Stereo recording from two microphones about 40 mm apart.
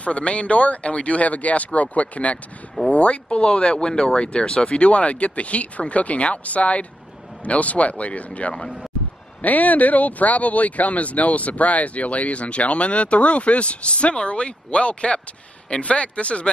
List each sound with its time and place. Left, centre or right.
0.0 s speech: left